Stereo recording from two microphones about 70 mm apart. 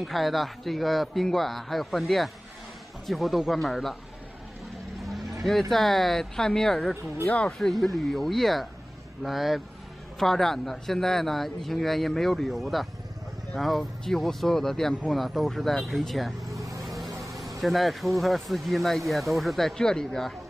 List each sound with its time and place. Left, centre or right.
0.0 s speech: centre
5.0 s speech: centre
7.2 s speech: centre
7.5 s speech: centre
16.8 s vehicle: centre
17.3 s speech: centre